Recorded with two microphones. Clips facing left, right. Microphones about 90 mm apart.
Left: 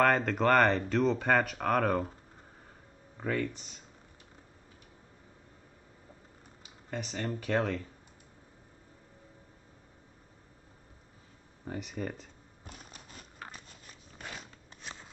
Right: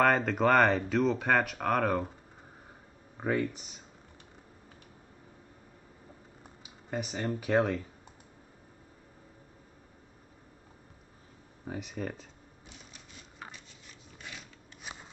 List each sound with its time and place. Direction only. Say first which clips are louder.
0.0 s speech: right 1 dB; centre (ahead or behind)
3.2 s speech: right 2 dB; 15° right (ahead or behind)
6.6 s speech: right 3 dB; 10° right (ahead or behind)
11.6 s speech: even; 5° right (ahead or behind)
12.6 s a sound: left 4 dB; 45° left (ahead or behind)
14.8 s shuffling cards: right 1 dB; 10° right (ahead or behind)